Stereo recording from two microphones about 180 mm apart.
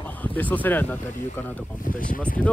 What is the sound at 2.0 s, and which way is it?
Speech, 50° left (ahead or behind).